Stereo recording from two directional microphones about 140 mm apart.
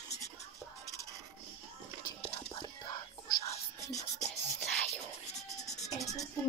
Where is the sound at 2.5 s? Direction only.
30° left (ahead or behind).